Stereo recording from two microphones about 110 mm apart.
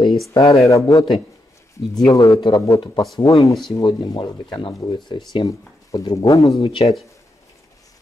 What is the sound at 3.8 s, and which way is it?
Speech, 45° left (ahead or behind).